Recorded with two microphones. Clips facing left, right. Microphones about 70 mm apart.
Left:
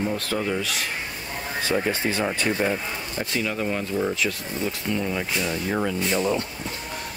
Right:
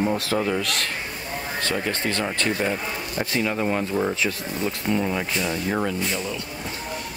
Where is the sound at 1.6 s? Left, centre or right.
Centre.